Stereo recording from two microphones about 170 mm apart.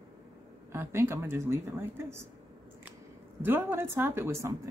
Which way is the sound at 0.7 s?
15° right (ahead or behind).